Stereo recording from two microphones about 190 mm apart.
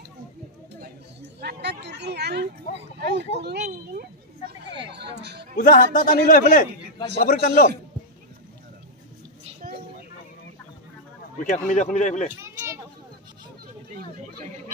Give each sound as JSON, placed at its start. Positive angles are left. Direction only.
{"t": 1.4, "sound": "a sound", "side_deg": -60}
{"t": 3.0, "sound": "speech", "side_deg": -60}
{"t": 5.6, "sound": "a man's voice", "side_deg": 45}
{"t": 9.6, "sound": "a sound", "side_deg": -50}
{"t": 11.6, "sound": "speech", "side_deg": 40}
{"t": 12.3, "sound": "children playing", "side_deg": -15}